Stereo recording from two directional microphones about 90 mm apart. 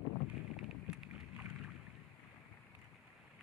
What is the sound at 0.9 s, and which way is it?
Boat, 15° right (ahead or behind).